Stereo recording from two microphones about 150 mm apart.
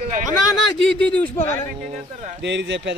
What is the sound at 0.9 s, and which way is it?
Speech, 10° left (ahead or behind).